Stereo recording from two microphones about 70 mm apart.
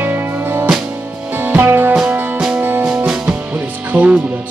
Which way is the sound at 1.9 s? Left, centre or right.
Centre.